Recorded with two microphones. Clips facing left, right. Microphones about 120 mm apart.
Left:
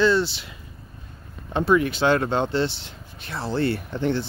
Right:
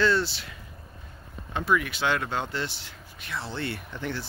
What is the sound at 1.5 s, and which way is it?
Speech, 30° left (ahead or behind).